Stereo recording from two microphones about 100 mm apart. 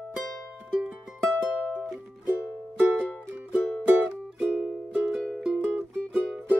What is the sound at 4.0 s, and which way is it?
Music, 20° right (ahead or behind).